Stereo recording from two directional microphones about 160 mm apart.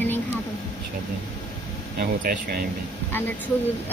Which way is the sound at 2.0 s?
75° right (ahead or behind).